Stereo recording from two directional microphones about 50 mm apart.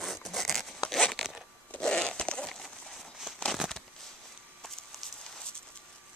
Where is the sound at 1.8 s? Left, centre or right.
Centre.